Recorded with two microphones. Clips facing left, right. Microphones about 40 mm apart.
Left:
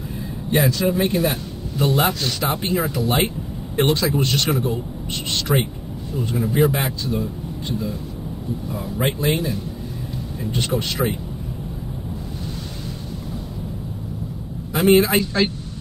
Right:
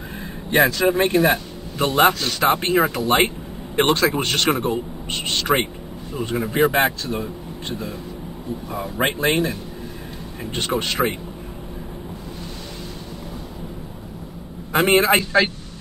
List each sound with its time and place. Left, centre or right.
0.6 s speech: right
0.8 s a man's voice: right
2.1 s speech: right
3.7 s a man's voice: right
10.4 s speech: right
14.7 s a man's voice: right